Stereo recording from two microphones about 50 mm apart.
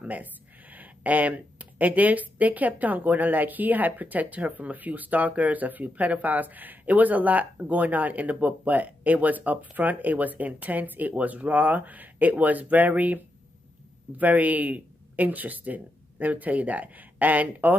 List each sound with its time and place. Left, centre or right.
0.0 s speech: right